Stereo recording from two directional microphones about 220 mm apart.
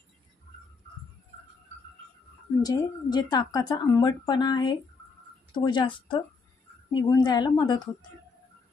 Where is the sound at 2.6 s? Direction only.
20° left (ahead or behind).